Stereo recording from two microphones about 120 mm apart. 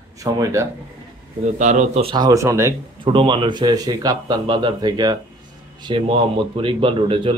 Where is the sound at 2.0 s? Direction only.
45° right (ahead or behind).